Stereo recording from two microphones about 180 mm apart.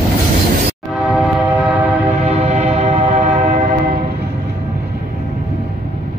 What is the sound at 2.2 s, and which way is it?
Train, 35° right (ahead or behind).